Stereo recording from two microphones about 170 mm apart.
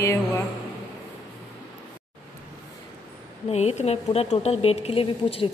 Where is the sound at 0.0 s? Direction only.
15° left (ahead or behind).